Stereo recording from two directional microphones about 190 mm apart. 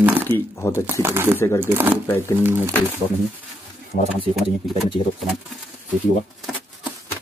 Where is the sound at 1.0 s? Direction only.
10° right (ahead or behind).